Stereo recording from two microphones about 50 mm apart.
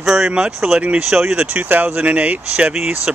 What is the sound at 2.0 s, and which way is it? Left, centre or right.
Speech, right.